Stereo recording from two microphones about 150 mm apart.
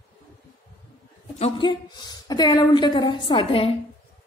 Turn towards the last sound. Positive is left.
turn(degrees=40)  # may be behind; listen again after turning